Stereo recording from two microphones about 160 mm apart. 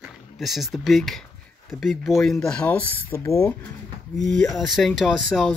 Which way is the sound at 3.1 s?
15° left (ahead or behind).